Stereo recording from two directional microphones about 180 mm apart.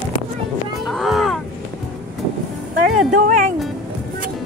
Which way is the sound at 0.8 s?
Centre (ahead or behind).